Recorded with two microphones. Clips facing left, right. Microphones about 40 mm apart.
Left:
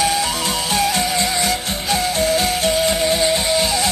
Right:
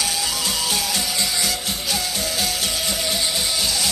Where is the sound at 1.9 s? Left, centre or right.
Left.